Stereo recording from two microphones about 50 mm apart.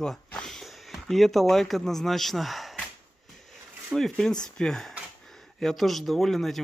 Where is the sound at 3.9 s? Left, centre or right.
Centre.